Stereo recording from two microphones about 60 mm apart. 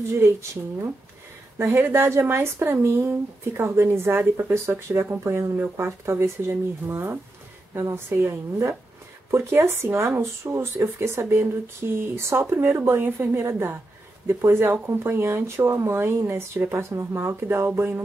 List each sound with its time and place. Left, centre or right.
0.1 s speech: right
1.6 s speech: right